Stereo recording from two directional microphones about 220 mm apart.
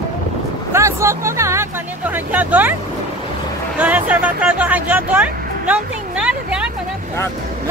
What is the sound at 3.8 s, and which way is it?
Speech, 5° right (ahead or behind).